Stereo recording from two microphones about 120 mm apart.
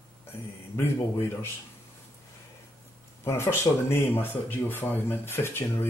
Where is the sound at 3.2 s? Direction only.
20° left (ahead or behind).